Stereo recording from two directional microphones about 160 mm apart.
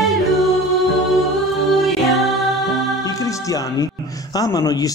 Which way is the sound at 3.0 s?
20° left (ahead or behind).